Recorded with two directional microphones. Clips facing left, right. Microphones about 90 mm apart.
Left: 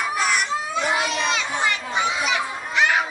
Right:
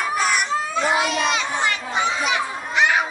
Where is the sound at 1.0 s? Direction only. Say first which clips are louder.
Right 2 dB; 15° right (ahead or behind).